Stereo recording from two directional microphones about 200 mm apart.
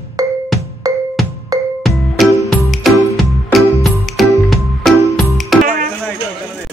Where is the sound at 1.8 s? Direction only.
Centre (ahead or behind).